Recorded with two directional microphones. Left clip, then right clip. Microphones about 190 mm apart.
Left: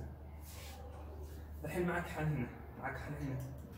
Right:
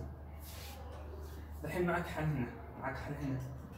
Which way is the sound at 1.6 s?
Centre (ahead or behind).